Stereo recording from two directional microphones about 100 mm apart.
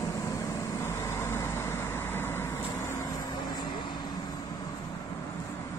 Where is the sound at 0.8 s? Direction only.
30° left (ahead or behind).